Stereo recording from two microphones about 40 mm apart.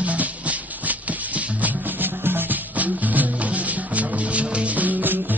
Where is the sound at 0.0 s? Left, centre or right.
Right.